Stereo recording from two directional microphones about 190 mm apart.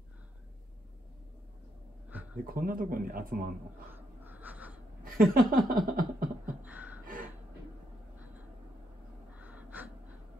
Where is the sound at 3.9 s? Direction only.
10° right (ahead or behind).